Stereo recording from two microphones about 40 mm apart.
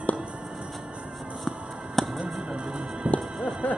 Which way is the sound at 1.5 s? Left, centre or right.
Centre.